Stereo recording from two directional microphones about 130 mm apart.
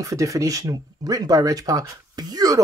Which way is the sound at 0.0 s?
25° right (ahead or behind).